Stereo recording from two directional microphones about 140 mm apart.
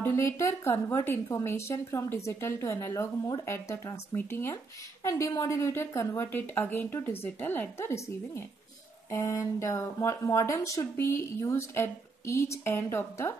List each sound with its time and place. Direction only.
0.0 s speech: 20° left (ahead or behind)